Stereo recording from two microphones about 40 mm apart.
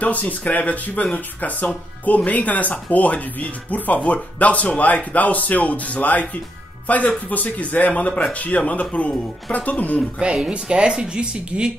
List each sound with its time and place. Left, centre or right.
0.0 s speech: left
10.2 s speech: right